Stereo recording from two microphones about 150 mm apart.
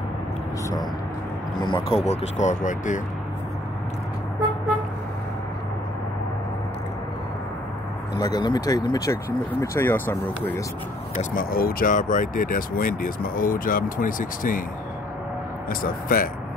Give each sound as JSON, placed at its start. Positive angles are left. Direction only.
{"t": 1.6, "sound": "speech", "side_deg": 35}
{"t": 8.2, "sound": "speech", "side_deg": 25}
{"t": 11.3, "sound": "speech", "side_deg": 75}
{"t": 15.7, "sound": "speech", "side_deg": 70}